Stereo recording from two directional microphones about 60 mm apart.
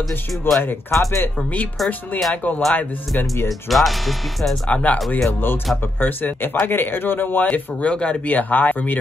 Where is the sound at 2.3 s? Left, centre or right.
Left.